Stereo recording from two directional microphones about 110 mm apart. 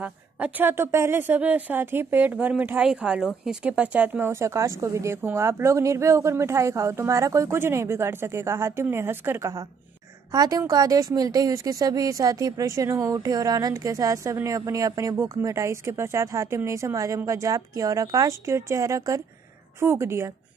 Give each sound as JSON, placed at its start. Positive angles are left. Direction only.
{"t": 0.0, "sound": "a woman's voice", "side_deg": -15}